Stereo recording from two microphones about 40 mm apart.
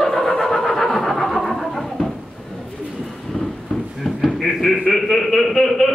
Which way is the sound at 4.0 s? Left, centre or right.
Centre.